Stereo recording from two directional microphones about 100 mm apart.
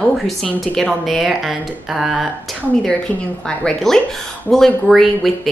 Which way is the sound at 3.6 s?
5° left (ahead or behind).